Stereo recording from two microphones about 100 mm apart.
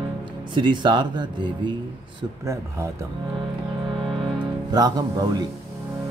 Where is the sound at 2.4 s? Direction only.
30° right (ahead or behind).